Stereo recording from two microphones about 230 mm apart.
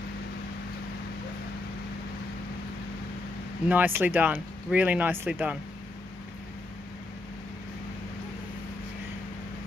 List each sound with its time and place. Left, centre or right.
3.6 s speech: centre